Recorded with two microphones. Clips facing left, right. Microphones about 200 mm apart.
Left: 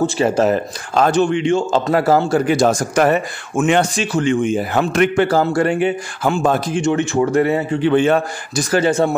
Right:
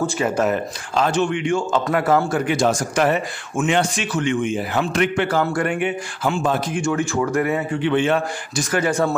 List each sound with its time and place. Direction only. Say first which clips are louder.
0.0 s a man's voice: left 5 dB; 30° left (ahead or behind)
0.9 s speech: left 5 dB; 45° left (ahead or behind)
1.2 s a man's voice: left 4 dB; 25° left (ahead or behind); by 3.8 s 50° left (ahead or behind)
3.9 s a man's voice: left 4 dB; 35° left (ahead or behind)
6.2 s speech: left 4 dB; 45° left (ahead or behind)
6.7 s a man's voice: left 4 dB; 25° left (ahead or behind)